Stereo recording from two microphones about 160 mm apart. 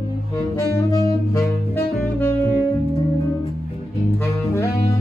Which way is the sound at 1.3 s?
20° left (ahead or behind).